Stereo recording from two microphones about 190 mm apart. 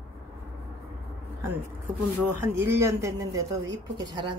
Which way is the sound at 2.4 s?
10° right (ahead or behind).